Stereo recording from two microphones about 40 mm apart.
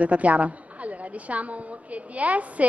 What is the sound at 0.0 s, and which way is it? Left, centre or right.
Speech, right.